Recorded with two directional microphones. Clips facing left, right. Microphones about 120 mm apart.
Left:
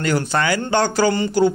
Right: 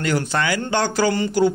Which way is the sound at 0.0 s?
40° left (ahead or behind).